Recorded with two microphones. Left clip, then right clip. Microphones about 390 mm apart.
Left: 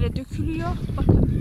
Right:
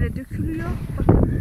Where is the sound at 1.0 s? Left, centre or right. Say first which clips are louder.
Right 4 dB; right.